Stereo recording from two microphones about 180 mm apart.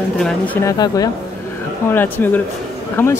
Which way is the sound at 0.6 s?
20° left (ahead or behind).